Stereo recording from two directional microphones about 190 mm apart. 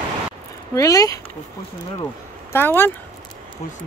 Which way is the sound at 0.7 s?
20° left (ahead or behind).